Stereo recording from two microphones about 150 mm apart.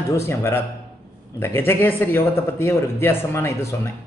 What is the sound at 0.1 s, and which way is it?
Speech, 15° left (ahead or behind).